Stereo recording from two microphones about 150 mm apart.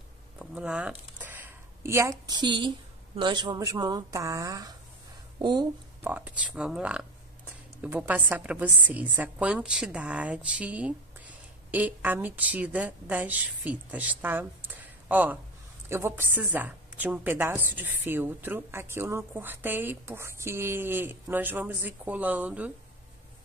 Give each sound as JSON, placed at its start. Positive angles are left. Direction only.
{"t": 0.4, "sound": "a sound", "side_deg": -5}
{"t": 3.2, "sound": "speech", "side_deg": -30}
{"t": 6.0, "sound": "a woman's voice", "side_deg": -10}